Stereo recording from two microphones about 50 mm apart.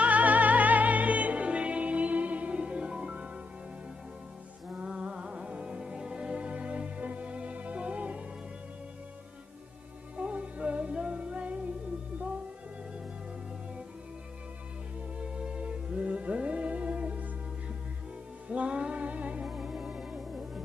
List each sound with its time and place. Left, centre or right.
0.0 s music: right
4.6 s music: right
10.1 s music: right
15.1 s music: right
18.5 s music: right
19.4 s music: centre